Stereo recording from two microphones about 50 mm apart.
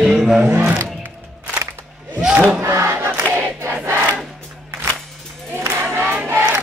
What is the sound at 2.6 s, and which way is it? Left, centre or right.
Battle cry, right.